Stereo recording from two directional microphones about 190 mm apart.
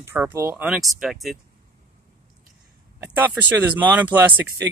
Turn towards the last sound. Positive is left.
turn(degrees=-10)  # may be behind; listen again after turning